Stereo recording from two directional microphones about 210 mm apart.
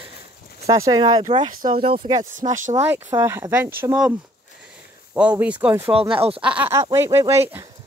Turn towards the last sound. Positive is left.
turn(degrees=-10)  # may be behind; listen again after turning